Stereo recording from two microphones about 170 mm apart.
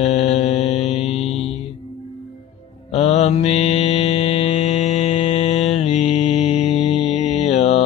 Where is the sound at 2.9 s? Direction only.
40° left (ahead or behind).